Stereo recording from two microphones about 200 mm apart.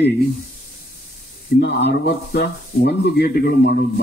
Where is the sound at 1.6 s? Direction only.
55° left (ahead or behind).